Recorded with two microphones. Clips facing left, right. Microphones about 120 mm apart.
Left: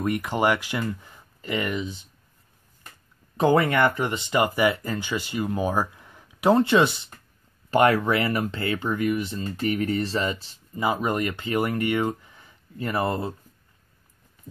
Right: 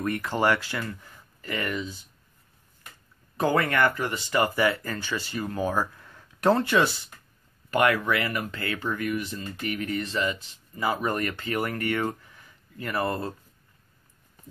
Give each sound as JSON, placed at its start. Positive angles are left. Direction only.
{"t": 0.0, "sound": "speech", "side_deg": 15}
{"t": 3.3, "sound": "speech", "side_deg": 20}
{"t": 7.7, "sound": "speech", "side_deg": 30}
{"t": 10.8, "sound": "speech", "side_deg": 20}